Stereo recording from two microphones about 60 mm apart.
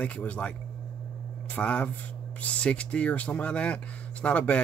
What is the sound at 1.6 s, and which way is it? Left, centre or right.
Speech, left.